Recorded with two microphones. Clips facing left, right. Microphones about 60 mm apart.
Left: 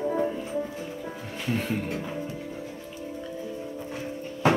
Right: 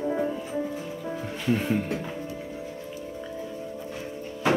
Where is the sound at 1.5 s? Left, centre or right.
Centre.